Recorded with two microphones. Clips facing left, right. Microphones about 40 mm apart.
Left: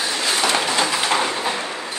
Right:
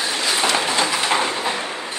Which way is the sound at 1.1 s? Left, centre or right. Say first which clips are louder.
Even; centre.